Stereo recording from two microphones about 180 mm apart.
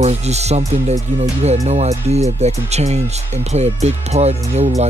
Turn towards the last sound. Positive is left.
turn(degrees=-35)  # may be behind; listen again after turning